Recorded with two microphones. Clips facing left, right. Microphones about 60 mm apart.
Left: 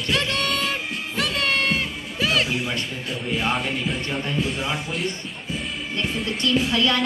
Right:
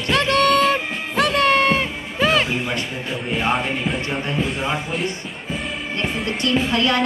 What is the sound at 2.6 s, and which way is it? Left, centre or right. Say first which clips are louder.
A woman's voice: right 3 dB; centre.